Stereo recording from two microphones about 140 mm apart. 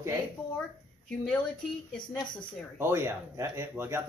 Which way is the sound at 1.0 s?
5° left (ahead or behind).